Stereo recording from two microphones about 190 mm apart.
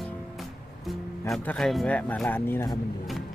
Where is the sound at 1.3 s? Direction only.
5° left (ahead or behind).